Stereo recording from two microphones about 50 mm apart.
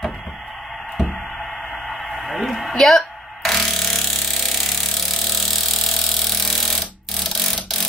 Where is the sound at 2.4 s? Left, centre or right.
Centre.